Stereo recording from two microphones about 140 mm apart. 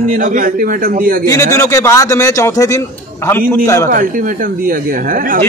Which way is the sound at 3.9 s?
80° right.